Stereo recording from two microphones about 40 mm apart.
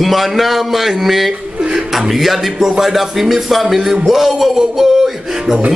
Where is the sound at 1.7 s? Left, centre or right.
Centre.